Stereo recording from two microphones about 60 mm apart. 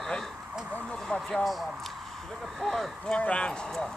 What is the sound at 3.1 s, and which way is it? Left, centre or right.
Speech, centre.